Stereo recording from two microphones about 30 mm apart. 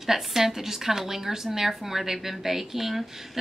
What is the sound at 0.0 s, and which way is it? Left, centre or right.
Speech, centre.